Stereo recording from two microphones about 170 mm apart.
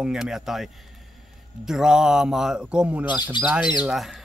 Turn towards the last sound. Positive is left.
turn(degrees=0)  # may be behind; listen again after turning